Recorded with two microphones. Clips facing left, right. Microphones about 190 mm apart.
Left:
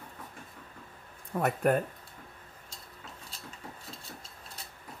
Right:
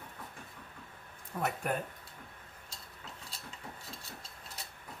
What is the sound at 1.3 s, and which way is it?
Speech, 55° left (ahead or behind).